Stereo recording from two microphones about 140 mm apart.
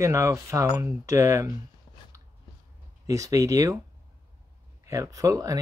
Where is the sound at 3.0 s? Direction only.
25° right (ahead or behind).